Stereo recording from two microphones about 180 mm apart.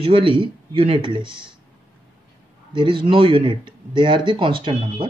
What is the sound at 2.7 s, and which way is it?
Speech, 25° right (ahead or behind).